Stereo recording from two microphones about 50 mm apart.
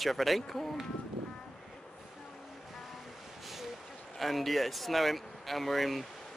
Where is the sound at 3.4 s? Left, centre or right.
Centre.